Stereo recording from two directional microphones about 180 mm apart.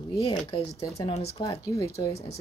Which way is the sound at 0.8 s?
15° left (ahead or behind).